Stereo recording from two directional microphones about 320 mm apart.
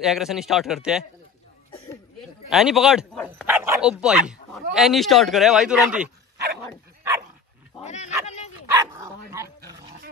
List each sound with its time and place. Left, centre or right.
0.0 s speech: centre
2.5 s speech: centre
7.8 s dog: left
8.7 s dog: centre